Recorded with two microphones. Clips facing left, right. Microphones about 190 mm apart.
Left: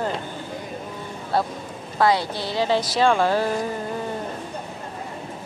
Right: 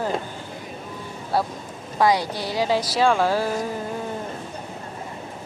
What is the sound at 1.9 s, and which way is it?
Speech, 15° right (ahead or behind).